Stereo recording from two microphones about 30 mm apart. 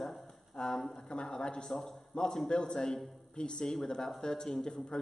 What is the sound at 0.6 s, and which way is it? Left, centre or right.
Speech, left.